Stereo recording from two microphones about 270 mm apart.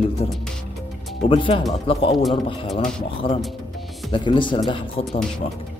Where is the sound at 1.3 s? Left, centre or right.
Centre.